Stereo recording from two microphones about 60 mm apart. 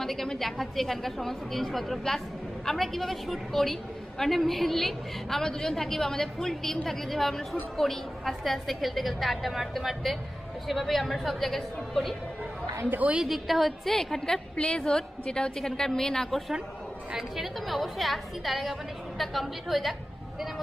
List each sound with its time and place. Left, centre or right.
0.0 s a woman's voice: centre
12.9 s a woman's voice: right
13.2 s a woman's voice: centre